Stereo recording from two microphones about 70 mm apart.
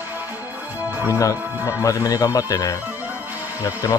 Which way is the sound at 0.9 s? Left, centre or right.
Right.